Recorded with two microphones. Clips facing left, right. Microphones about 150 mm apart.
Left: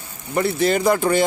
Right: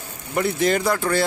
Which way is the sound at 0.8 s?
15° left (ahead or behind).